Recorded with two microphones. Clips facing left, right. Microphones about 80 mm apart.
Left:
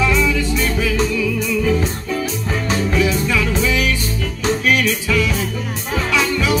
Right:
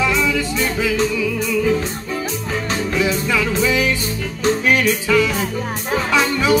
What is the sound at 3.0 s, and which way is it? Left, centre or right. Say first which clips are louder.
Music: right 1 dB; right.